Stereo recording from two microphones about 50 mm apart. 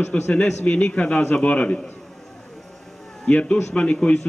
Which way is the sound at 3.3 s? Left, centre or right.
Left.